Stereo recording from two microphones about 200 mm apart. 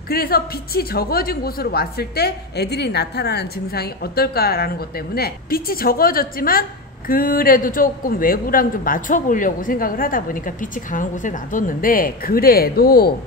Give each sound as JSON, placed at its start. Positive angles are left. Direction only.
{"t": 0.1, "sound": "a woman's voice", "side_deg": 50}